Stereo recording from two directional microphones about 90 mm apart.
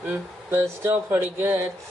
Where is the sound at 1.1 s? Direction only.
20° right (ahead or behind).